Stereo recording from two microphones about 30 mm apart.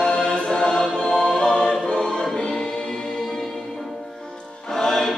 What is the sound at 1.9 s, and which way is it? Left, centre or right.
Music, left.